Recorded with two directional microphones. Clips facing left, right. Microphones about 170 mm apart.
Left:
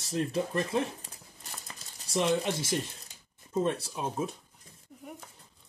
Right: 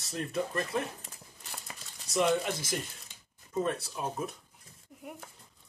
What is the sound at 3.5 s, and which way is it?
Speech, 25° left (ahead or behind).